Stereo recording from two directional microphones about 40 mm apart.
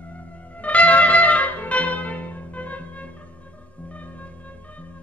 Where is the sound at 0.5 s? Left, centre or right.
Left.